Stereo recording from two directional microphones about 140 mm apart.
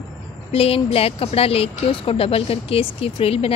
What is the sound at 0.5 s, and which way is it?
Speech, 45° left (ahead or behind).